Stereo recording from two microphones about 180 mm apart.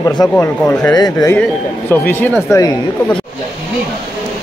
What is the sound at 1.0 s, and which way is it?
Speech, 20° left (ahead or behind).